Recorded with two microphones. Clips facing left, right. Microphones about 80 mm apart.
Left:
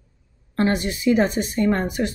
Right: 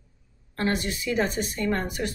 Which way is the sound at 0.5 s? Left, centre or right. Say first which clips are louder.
Left 6 dB; left.